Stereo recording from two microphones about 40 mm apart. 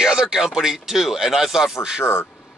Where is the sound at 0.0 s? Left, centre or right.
Centre.